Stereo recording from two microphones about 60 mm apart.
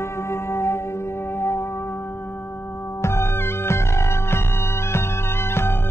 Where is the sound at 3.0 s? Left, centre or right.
Left.